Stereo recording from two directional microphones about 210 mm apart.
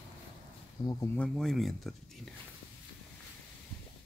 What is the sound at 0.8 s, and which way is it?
Speech, 15° left (ahead or behind).